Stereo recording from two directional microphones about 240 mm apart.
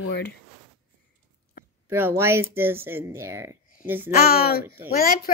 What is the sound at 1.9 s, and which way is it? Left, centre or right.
Speech, centre.